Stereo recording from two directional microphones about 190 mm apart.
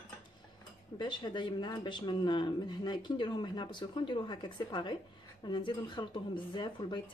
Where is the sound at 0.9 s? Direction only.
25° left (ahead or behind).